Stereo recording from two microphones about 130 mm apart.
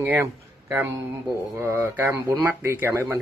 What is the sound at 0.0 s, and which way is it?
Speech, 20° right (ahead or behind).